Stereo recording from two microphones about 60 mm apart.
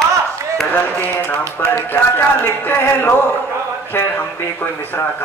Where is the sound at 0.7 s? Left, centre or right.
Left.